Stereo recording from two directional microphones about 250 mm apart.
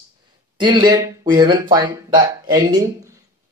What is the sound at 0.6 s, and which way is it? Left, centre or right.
Speech, centre.